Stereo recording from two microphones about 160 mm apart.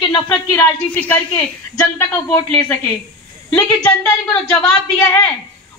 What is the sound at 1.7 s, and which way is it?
Speech, 20° left (ahead or behind).